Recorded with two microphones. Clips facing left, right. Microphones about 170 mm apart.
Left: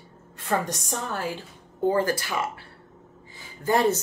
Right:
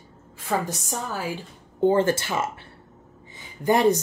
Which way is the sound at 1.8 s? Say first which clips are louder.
Right 3 dB; 25° right (ahead or behind).